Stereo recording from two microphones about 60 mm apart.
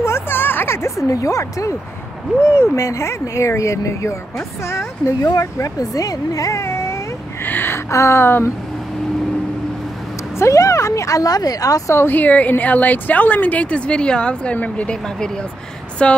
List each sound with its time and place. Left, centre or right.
0.0 s music: left
0.8 s speech: left
2.4 s a woman's voice: left
5.2 s speech: left
7.4 s a sound: left
7.9 s a woman's voice: left
10.4 s speech: left
11.9 s a woman's voice: left
12.2 s a woman's voice: left
16.0 s speech: centre